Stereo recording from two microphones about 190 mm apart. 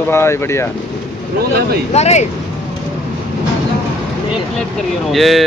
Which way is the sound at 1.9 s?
35° left (ahead or behind).